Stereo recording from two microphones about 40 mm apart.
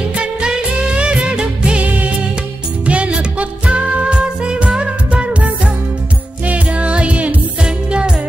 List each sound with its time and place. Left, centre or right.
0.1 s music: right
1.9 s music: right
2.9 s music: right